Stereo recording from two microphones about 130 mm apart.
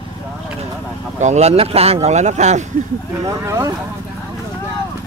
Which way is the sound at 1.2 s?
60° right (ahead or behind).